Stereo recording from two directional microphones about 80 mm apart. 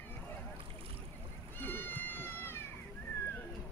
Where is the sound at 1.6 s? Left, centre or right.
Left.